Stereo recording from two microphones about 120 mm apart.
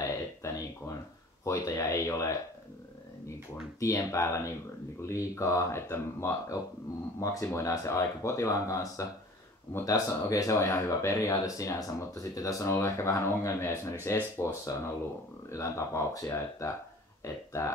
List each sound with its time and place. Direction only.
0.0 s a sound: 25° left (ahead or behind)
1.4 s speech: 25° left (ahead or behind)
3.8 s speech: 25° left (ahead or behind)